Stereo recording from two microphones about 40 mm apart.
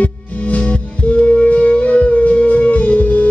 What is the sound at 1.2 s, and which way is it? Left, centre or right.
Music, left.